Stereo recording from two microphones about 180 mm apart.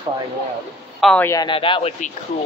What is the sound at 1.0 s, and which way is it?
Speech, 5° left (ahead or behind).